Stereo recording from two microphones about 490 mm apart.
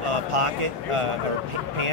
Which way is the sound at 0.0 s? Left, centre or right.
Right.